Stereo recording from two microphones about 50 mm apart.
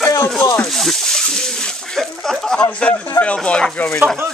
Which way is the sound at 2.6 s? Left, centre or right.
Left.